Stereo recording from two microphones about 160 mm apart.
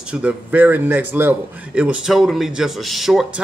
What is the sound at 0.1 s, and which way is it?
A man's voice, 5° right (ahead or behind).